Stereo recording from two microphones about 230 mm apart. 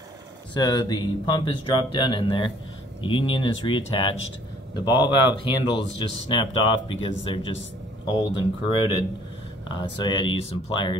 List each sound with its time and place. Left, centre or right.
0.6 s speech: centre